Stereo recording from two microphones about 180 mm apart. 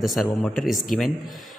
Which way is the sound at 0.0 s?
Centre (ahead or behind).